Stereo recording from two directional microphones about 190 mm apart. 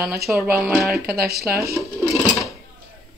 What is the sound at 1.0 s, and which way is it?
Speech, 55° right (ahead or behind).